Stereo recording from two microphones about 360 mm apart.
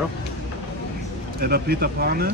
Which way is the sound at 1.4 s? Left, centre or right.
Right.